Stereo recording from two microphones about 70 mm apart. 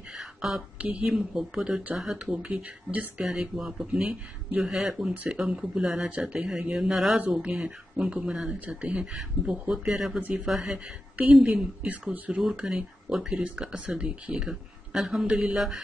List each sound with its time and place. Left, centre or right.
0.2 s a sound: centre
0.7 s a man's voice: centre
3.3 s a man's voice: centre